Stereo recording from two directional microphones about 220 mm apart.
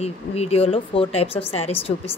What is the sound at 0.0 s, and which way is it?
Speech, 30° left (ahead or behind).